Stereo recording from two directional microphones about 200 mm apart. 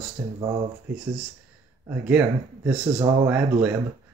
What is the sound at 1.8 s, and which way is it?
Speech, 5° right (ahead or behind).